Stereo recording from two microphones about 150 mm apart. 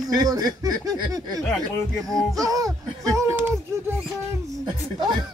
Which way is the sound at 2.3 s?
25° right (ahead or behind).